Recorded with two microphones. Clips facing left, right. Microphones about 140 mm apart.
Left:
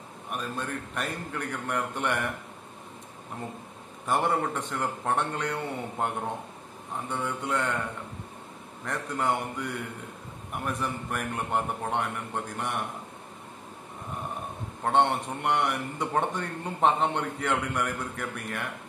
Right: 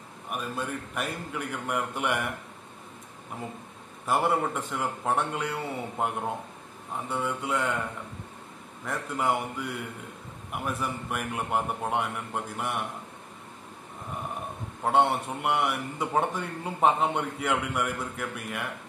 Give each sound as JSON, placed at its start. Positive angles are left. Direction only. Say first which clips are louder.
{"t": 0.3, "sound": "a man's voice", "louder": "right 1 dB", "side_deg": -5}
{"t": 4.0, "sound": "a man's voice", "louder": "right 1 dB", "side_deg": -5}
{"t": 8.8, "sound": "a man's voice", "louder": "even", "side_deg": -5}
{"t": 14.8, "sound": "a man's voice", "louder": "right 1 dB", "side_deg": -5}